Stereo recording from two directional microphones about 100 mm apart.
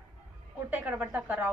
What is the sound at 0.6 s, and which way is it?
Speech, 15° right (ahead or behind).